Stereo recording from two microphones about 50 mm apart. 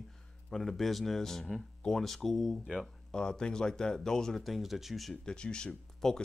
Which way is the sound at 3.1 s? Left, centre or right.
Centre.